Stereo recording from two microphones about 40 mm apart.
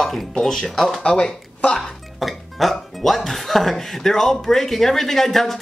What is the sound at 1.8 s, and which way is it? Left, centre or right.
Speech, centre.